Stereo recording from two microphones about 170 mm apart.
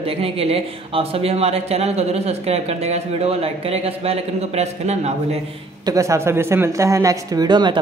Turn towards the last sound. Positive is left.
turn(degrees=-25)  # may be behind; listen again after turning